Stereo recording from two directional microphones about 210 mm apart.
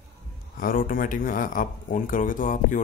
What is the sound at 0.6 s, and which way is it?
Speech, 40° left (ahead or behind).